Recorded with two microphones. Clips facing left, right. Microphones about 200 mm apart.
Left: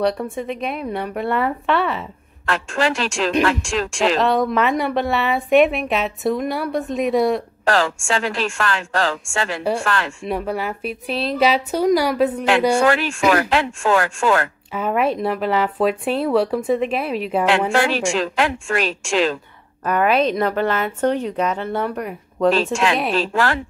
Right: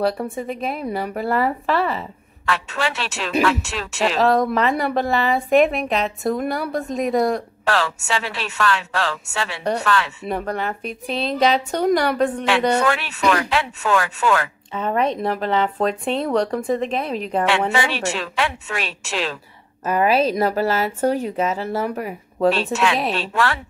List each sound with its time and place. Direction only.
0.0 s speech: centre (ahead or behind)
19.9 s a woman's voice: 30° right (ahead or behind)
20.2 s a woman's voice: 5° right (ahead or behind)